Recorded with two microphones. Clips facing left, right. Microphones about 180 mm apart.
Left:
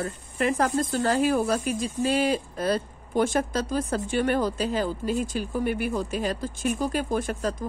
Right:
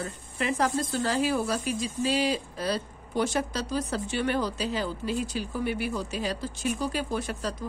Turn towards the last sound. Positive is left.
turn(degrees=50)  # may be behind; listen again after turning